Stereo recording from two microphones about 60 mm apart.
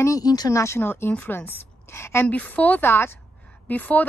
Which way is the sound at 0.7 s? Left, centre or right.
Left.